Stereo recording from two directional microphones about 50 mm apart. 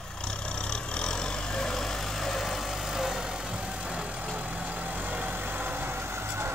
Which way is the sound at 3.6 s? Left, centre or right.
Right.